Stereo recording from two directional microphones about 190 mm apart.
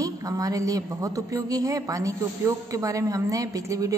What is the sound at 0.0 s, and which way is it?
A man's voice, 20° right (ahead or behind).